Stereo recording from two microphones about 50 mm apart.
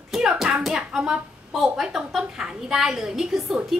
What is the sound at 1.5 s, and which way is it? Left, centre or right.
Speech, centre.